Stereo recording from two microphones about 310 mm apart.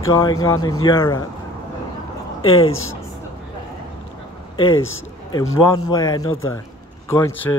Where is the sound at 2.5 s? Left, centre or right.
Left.